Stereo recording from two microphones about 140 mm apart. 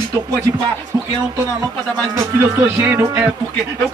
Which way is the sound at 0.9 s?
25° right (ahead or behind).